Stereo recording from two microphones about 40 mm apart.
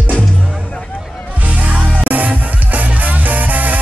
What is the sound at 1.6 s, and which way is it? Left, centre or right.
Music, right.